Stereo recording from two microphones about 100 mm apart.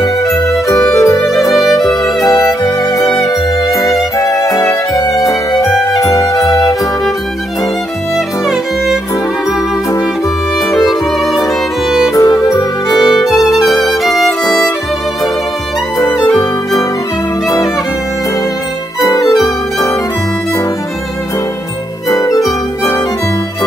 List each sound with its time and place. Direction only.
0.0 s music: 35° left (ahead or behind)
10.7 s violin: centre (ahead or behind)
11.9 s music: 5° right (ahead or behind)
12.2 s music: 35° left (ahead or behind)
14.0 s music: centre (ahead or behind)
16.0 s music: 35° left (ahead or behind)
18.9 s music: 35° left (ahead or behind)
22.1 s music: 35° left (ahead or behind)